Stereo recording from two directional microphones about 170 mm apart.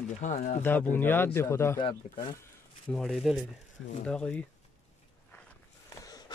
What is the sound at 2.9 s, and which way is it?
Speech, centre (ahead or behind).